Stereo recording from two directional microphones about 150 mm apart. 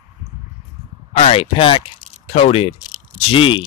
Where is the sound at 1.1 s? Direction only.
40° left (ahead or behind).